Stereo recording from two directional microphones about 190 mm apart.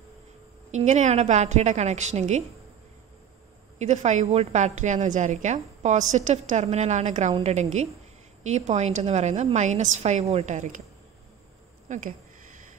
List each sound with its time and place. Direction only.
0.7 s a woman's voice: 35° right (ahead or behind)
3.7 s a woman's voice: 35° right (ahead or behind)
11.9 s a woman's voice: 40° right (ahead or behind)